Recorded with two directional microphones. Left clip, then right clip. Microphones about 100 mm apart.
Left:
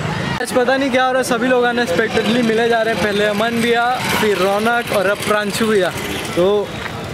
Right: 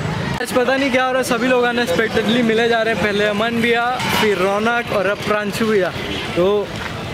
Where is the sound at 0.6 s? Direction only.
10° left (ahead or behind).